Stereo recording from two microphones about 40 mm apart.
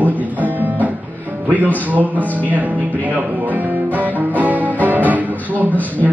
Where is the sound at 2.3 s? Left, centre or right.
Right.